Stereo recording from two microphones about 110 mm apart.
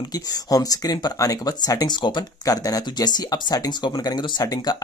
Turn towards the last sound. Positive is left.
turn(degrees=35)  # may be behind; listen again after turning